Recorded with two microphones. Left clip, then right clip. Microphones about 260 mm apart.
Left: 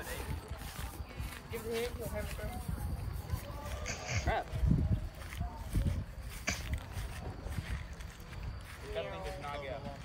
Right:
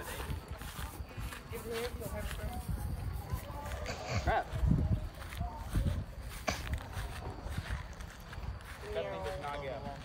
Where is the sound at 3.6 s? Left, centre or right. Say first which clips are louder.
Even; right.